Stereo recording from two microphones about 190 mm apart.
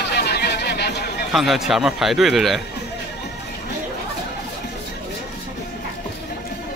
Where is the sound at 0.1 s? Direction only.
60° left (ahead or behind).